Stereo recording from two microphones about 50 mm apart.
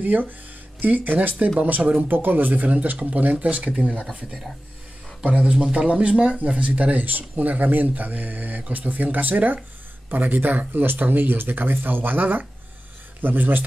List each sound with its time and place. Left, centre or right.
0.0 s speech: right
2.0 s speech: right
4.1 s speech: centre
5.2 s speech: right